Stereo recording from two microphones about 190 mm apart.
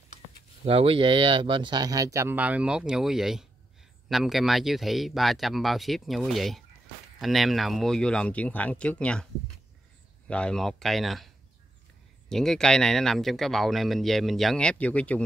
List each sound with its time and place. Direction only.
0.7 s speech: 30° right (ahead or behind); by 11.2 s centre (ahead or behind)
12.3 s speech: 5° left (ahead or behind)